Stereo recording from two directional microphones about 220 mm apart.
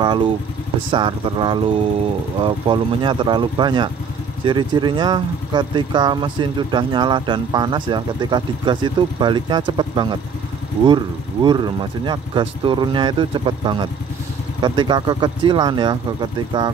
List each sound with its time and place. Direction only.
0.0 s vehicle: 20° right (ahead or behind)
0.8 s speech: 20° right (ahead or behind)